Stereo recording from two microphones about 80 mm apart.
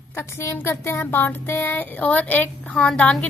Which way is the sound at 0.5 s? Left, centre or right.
Left.